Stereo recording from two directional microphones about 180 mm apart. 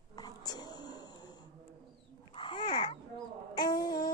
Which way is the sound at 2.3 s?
25° left (ahead or behind).